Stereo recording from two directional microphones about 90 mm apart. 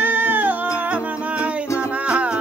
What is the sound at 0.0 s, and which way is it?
Music, 20° right (ahead or behind).